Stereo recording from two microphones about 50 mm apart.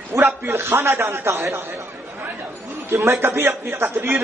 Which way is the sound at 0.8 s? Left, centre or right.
Right.